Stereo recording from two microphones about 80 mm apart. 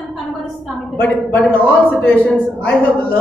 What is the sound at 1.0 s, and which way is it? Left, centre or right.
A man's voice, left.